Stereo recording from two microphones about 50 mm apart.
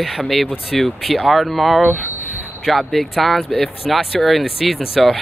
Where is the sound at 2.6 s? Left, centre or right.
Centre.